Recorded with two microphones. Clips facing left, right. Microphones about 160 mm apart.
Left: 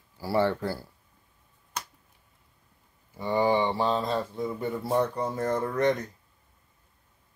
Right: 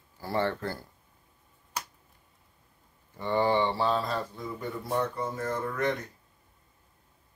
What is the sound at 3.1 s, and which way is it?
Speech, 10° left (ahead or behind).